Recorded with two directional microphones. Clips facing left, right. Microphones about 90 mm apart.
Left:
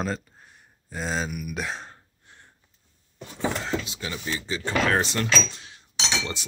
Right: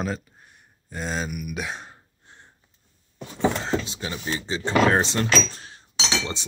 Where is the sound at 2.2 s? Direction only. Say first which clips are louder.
Right 3 dB; 25° right (ahead or behind).